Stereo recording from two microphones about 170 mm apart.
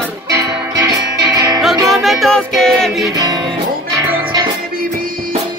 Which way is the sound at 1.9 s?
Centre (ahead or behind).